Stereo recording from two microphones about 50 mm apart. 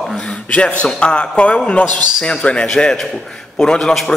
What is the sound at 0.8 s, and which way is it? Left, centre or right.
A man's voice, centre.